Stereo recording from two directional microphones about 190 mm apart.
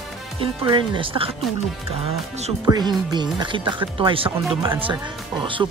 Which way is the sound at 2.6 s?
20° right (ahead or behind).